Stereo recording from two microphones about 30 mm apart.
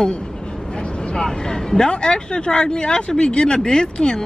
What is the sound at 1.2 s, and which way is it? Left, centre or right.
Speech, left.